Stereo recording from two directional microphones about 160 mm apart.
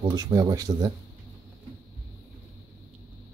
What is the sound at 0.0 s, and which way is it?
Speech, 25° right (ahead or behind).